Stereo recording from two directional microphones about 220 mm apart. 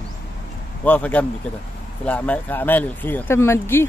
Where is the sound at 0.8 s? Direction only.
5° left (ahead or behind).